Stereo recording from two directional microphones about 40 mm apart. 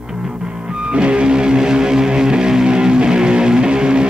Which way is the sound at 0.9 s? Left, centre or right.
Right.